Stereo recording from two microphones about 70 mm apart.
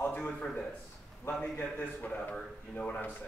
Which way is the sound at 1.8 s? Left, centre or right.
Left.